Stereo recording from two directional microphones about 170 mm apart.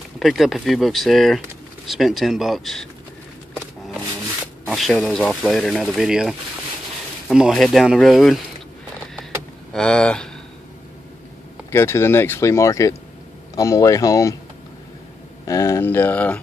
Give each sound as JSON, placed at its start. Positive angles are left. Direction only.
{"t": 0.2, "sound": "speech", "side_deg": 0}
{"t": 4.6, "sound": "speech", "side_deg": 0}
{"t": 9.7, "sound": "speech", "side_deg": 5}
{"t": 11.7, "sound": "speech", "side_deg": 15}
{"t": 15.4, "sound": "speech", "side_deg": 15}